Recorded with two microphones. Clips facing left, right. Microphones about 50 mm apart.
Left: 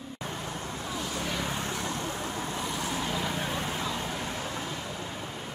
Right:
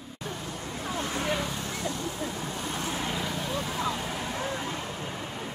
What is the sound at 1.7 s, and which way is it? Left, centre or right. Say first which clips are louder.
Vehicle: even; left.